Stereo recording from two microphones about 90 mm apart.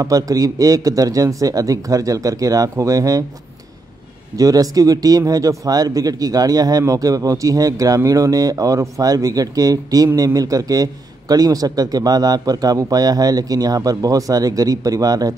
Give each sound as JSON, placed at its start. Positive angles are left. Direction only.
{"t": 0.0, "sound": "a man's voice", "side_deg": -40}
{"t": 4.4, "sound": "speech", "side_deg": -40}